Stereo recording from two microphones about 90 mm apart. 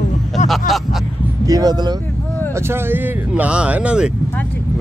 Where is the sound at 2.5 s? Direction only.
25° right (ahead or behind); by 4.1 s 10° right (ahead or behind).